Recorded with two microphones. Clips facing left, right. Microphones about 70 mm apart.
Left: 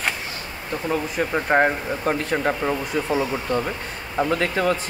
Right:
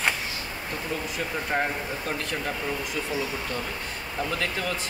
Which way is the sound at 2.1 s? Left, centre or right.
Left.